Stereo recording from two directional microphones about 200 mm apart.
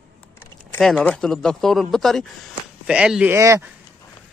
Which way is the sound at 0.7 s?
Centre (ahead or behind).